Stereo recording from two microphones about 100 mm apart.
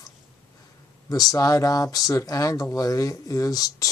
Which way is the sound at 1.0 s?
35° left (ahead or behind).